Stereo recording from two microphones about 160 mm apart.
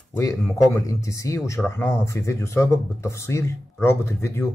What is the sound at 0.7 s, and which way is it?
Speech, 20° left (ahead or behind).